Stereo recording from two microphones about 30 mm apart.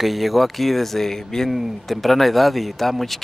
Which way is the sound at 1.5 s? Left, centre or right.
Centre.